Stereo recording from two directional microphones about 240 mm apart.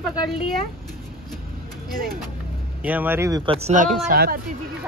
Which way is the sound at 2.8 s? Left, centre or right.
Centre.